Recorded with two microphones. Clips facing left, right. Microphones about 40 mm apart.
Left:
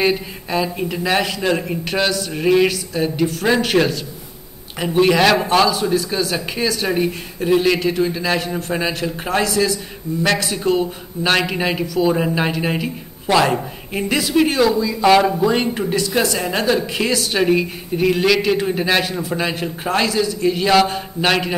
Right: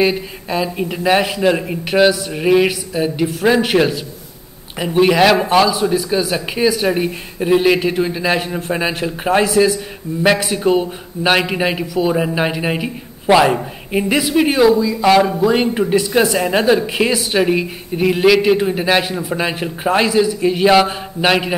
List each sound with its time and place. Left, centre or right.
0.0 s a man's voice: centre
15.6 s a man's voice: centre